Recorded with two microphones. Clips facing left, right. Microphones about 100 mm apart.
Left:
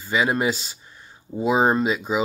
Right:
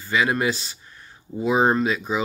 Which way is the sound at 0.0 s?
20° left (ahead or behind).